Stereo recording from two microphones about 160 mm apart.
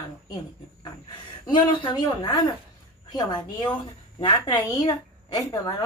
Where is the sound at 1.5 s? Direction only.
30° left (ahead or behind).